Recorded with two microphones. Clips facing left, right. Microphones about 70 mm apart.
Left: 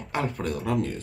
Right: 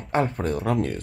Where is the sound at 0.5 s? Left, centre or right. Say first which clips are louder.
Right 3 dB; right.